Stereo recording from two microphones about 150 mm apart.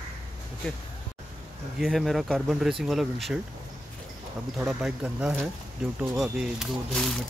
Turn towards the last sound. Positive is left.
turn(degrees=0)  # may be behind; listen again after turning